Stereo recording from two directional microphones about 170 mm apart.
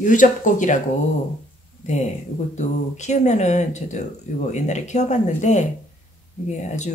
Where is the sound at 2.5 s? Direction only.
45° left (ahead or behind).